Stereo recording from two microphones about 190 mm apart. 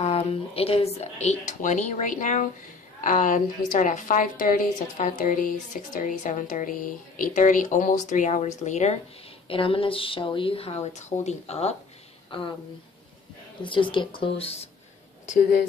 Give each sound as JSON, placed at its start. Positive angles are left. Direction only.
{"t": 0.0, "sound": "a woman's voice", "side_deg": 35}
{"t": 13.6, "sound": "a woman's voice", "side_deg": 25}